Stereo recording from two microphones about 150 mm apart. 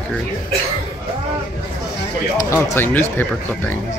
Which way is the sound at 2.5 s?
15° left (ahead or behind).